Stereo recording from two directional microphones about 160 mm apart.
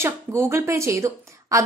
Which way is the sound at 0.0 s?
20° right (ahead or behind).